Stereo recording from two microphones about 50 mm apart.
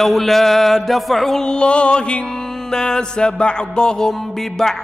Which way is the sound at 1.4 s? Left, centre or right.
Left.